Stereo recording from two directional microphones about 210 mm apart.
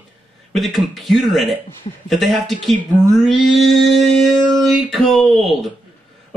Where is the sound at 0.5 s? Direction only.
Centre (ahead or behind).